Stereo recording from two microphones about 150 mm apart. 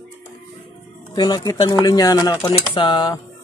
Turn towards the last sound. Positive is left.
turn(degrees=30)  # may be behind; listen again after turning